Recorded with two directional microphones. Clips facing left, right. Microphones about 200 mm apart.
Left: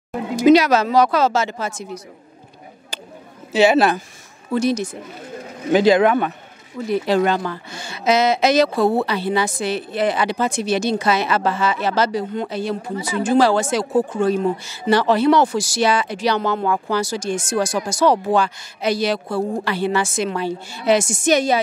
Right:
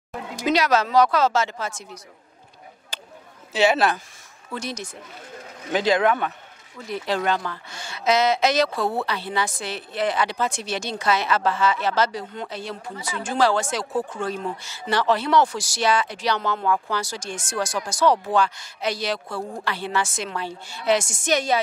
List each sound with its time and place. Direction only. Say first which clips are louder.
0.1 s speech: left 11 dB; 15° left (ahead or behind)
2.9 s a sound: left 5 dB; 5° left (ahead or behind)
3.5 s speech: left 5 dB; 10° left (ahead or behind)
13.9 s speech: left 8 dB; 25° left (ahead or behind)
14.2 s speech: left 9 dB; 10° left (ahead or behind)
19.2 s speech: left 9 dB; 35° left (ahead or behind)
19.6 s speech: left 6 dB; 10° left (ahead or behind)